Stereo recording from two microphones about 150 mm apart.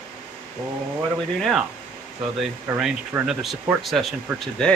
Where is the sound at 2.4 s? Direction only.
5° right (ahead or behind).